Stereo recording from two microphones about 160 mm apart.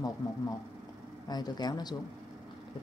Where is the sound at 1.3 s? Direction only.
25° left (ahead or behind).